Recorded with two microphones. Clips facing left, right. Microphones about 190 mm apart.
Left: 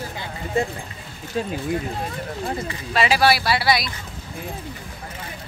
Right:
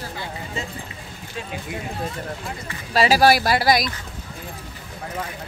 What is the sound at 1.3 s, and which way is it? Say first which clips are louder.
Speech: left 9 dB; 40° left (ahead or behind).